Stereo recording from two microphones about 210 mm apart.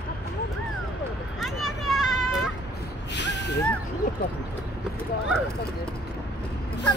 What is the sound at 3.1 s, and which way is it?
Gasp, 55° left (ahead or behind).